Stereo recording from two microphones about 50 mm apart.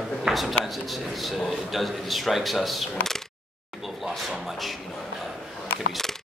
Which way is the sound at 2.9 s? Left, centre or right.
Centre.